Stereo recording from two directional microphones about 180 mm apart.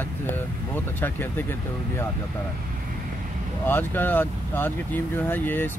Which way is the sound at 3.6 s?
10° left (ahead or behind).